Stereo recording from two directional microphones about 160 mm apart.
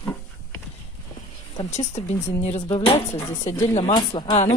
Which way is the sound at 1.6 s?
35° left (ahead or behind).